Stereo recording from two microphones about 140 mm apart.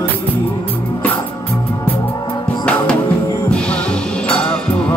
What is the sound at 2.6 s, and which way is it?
Music, 10° left (ahead or behind).